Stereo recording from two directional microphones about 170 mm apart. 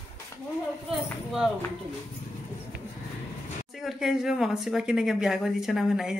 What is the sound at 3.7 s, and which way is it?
Speech, centre (ahead or behind).